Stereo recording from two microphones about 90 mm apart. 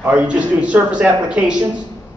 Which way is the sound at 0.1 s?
15° right (ahead or behind).